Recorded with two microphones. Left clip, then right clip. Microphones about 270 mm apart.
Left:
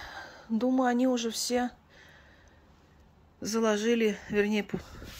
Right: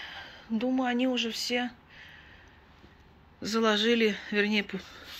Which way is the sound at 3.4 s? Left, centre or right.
Centre.